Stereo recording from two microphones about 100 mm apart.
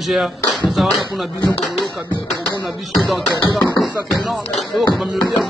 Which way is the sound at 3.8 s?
Centre (ahead or behind).